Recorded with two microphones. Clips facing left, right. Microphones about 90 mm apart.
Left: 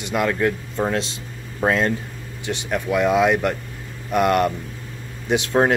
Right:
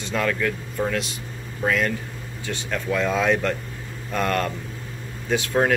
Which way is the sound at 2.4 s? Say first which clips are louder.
Left 3 dB; 20° left (ahead or behind).